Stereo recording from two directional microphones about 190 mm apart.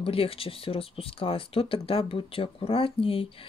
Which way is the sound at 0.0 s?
30° left (ahead or behind).